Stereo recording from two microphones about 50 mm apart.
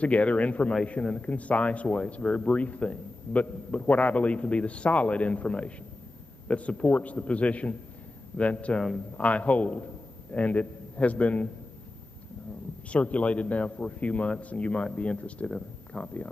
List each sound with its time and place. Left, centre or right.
0.0 s speech: left
12.9 s speech: left
15.5 s speech: centre